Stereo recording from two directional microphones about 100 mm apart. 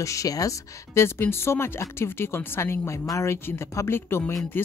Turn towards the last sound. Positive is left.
turn(degrees=25)  # may be behind; listen again after turning